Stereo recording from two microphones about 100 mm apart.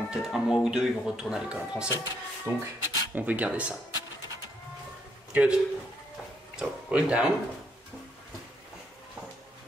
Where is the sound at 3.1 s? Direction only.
15° right (ahead or behind).